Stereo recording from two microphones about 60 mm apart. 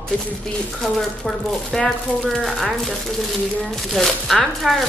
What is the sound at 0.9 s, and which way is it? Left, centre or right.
A woman's voice, centre.